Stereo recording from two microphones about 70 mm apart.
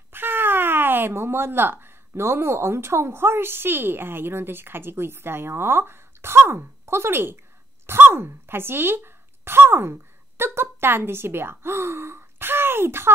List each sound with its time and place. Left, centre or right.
0.1 s speech: right